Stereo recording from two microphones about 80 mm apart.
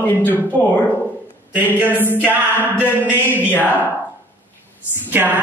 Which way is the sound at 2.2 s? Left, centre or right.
Left.